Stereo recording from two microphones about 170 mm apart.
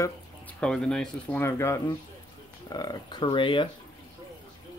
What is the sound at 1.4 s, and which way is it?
Speech, 15° left (ahead or behind).